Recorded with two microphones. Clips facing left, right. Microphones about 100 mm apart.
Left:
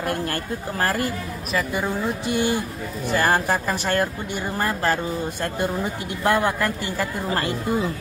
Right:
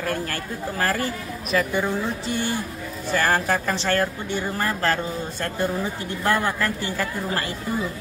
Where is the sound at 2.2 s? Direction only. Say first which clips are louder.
Left 4 dB; 15° left (ahead or behind).